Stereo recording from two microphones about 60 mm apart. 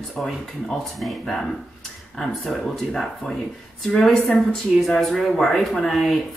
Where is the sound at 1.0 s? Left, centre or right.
Centre.